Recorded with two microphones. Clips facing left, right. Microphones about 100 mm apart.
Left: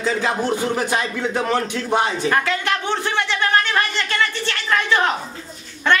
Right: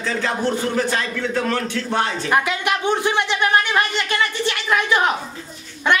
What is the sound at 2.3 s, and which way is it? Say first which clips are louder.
A man's voice: right 1 dB; 15° right (ahead or behind).